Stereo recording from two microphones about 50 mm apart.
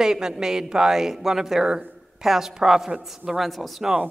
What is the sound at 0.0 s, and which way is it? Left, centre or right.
A woman's voice, centre.